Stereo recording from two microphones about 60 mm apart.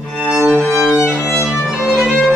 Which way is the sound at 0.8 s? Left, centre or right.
Centre.